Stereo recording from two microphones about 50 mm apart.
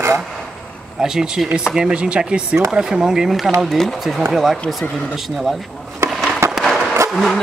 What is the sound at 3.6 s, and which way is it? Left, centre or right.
Speech, centre.